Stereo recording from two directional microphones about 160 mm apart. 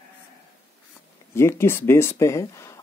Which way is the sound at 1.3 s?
15° left (ahead or behind).